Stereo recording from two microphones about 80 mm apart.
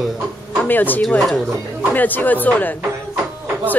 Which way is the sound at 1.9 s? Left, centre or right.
Left.